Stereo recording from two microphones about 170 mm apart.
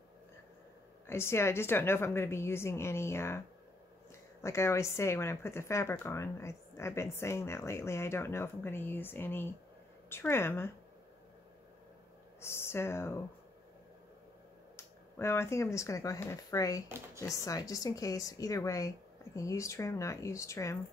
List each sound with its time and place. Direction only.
1.0 s a woman's voice: 15° left (ahead or behind)
12.4 s a woman's voice: 15° left (ahead or behind)
14.8 s a woman's voice: 15° left (ahead or behind)